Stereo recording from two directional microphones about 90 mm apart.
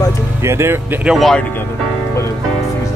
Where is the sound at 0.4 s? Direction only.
30° right (ahead or behind).